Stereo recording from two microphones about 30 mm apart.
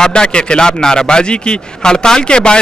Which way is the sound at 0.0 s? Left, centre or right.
Left.